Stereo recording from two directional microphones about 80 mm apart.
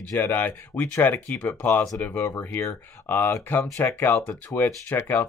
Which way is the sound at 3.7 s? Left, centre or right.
Left.